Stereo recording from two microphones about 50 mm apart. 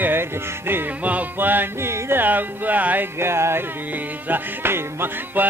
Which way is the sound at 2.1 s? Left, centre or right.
Right.